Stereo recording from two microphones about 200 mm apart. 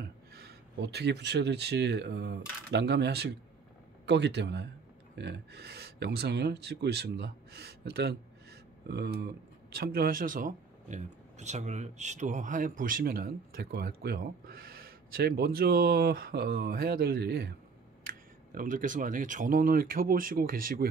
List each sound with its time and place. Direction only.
0.4 s speech: 55° right (ahead or behind)